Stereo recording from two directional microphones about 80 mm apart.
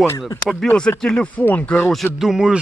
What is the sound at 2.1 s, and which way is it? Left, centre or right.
Speech, centre.